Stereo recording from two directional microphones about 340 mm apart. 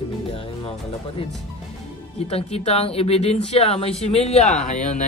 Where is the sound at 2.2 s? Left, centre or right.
Centre.